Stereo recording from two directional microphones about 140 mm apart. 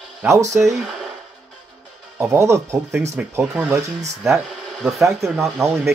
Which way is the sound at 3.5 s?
5° right (ahead or behind).